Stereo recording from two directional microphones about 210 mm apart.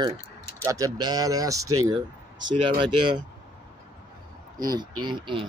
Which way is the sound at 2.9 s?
20° right (ahead or behind).